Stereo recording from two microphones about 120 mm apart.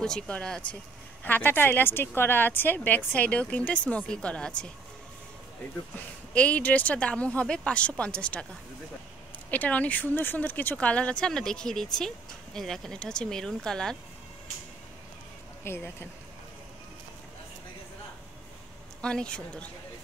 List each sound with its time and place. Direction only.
0.0 s speech: 5° left (ahead or behind)
5.9 s speech: 10° left (ahead or behind)
9.5 s speech: 10° left (ahead or behind)
15.6 s speech: 20° left (ahead or behind)
18.9 s speech: 10° left (ahead or behind)